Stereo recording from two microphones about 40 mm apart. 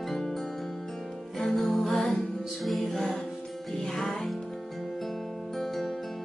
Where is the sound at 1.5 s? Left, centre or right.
Centre.